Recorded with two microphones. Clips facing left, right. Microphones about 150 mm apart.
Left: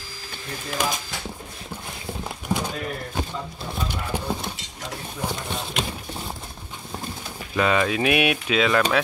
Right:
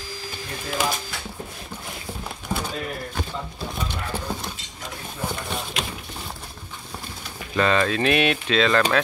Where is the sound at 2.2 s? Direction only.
15° left (ahead or behind).